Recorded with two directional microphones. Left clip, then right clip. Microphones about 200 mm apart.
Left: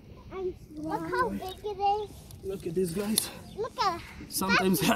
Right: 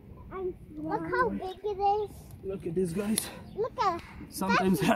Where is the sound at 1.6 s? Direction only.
20° right (ahead or behind).